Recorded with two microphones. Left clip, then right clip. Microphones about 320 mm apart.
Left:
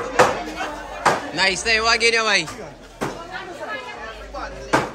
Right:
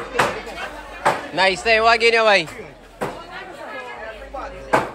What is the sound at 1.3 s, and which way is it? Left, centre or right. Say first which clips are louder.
Speech: right 2 dB; centre.